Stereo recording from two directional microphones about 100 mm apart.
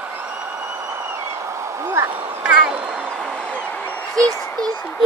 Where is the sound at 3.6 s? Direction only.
15° left (ahead or behind).